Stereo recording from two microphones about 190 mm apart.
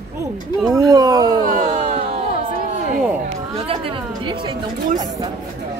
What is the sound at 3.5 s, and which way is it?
Chatter, 30° right (ahead or behind).